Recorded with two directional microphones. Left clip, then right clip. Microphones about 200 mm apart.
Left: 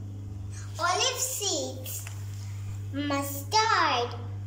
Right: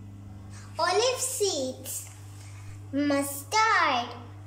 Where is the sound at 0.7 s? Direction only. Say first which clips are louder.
Right 2 dB; 25° right (ahead or behind).